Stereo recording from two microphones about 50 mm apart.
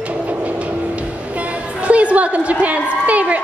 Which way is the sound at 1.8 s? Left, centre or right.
Right.